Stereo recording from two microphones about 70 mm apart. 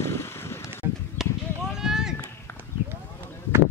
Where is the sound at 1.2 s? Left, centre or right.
Centre.